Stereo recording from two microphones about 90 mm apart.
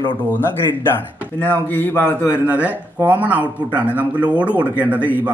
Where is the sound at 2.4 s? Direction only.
15° right (ahead or behind).